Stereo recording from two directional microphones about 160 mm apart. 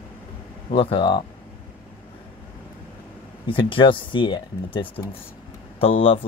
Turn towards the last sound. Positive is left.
turn(degrees=35)  # may be behind; listen again after turning